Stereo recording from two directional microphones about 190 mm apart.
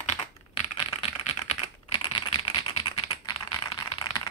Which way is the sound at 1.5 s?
25° left (ahead or behind).